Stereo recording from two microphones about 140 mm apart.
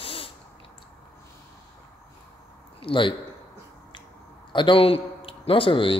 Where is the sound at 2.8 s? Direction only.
35° left (ahead or behind).